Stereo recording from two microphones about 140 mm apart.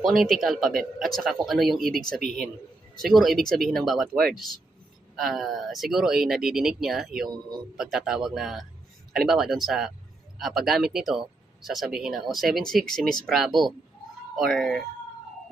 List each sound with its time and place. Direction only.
0.0 s speech: centre (ahead or behind)
7.2 s a man's voice: 30° right (ahead or behind)
7.7 s speech: 5° right (ahead or behind)